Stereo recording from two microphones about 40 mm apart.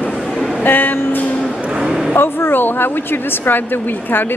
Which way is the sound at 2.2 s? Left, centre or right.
Left.